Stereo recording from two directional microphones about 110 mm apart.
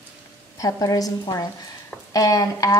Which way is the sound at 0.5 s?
30° left (ahead or behind).